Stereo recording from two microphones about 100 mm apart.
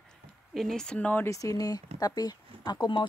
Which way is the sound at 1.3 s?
35° left (ahead or behind).